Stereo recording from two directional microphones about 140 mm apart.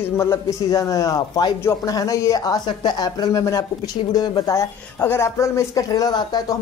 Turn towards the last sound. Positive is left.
turn(degrees=30)  # may be behind; listen again after turning